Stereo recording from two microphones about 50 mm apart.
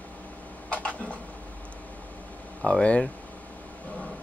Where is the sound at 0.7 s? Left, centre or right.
Left.